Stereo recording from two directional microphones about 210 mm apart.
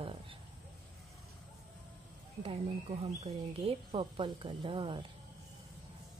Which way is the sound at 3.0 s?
25° right (ahead or behind).